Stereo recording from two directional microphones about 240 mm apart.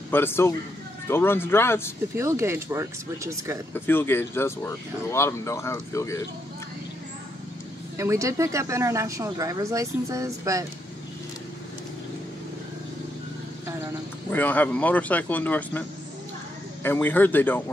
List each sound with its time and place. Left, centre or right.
0.1 s speech: centre
2.1 s speech: centre
3.7 s speech: centre
8.0 s speech: centre
14.3 s speech: centre
16.8 s speech: centre